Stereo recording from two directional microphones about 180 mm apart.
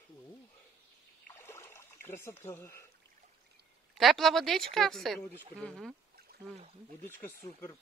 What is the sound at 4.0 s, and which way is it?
A woman's voice, centre (ahead or behind).